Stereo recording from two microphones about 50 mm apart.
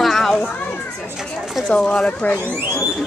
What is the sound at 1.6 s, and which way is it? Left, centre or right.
Speech, left.